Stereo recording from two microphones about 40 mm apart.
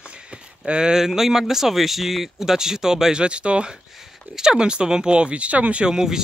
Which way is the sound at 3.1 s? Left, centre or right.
Right.